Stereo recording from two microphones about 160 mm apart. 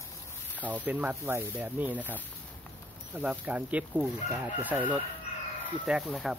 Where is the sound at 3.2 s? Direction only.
10° right (ahead or behind).